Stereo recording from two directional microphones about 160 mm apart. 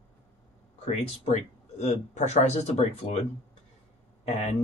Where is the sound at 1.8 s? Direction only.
45° left (ahead or behind).